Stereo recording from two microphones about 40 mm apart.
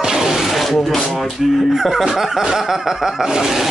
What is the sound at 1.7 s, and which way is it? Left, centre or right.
Snicker, centre.